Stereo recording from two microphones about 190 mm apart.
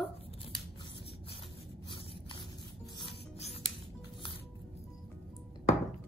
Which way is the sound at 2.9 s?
30° left (ahead or behind).